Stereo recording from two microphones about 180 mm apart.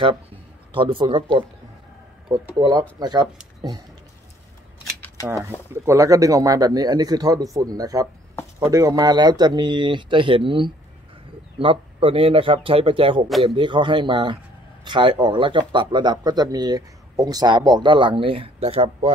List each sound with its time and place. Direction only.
0.0 s speech: 30° right (ahead or behind)
5.7 s speech: 15° right (ahead or behind)
13.3 s speech: centre (ahead or behind)
13.6 s speech: 25° right (ahead or behind)